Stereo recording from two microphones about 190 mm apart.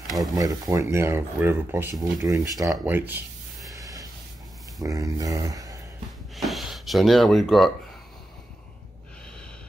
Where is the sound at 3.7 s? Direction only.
20° right (ahead or behind).